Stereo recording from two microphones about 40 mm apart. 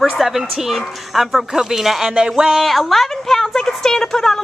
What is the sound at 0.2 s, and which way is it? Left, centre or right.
Speech, centre.